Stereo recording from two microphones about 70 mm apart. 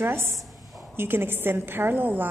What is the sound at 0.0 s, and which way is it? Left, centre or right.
A woman's voice, right.